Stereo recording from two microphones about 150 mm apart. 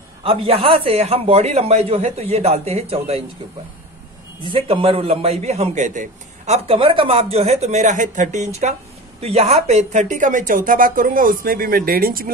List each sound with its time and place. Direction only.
0.2 s a man's voice: 40° right (ahead or behind)
4.5 s a man's voice: 35° right (ahead or behind); by 8.5 s 55° right (ahead or behind)
9.2 s speech: 45° right (ahead or behind); by 12.3 s 75° right (ahead or behind)